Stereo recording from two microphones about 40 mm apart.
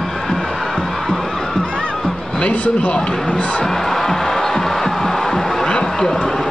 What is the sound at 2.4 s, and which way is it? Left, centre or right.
Speech, left.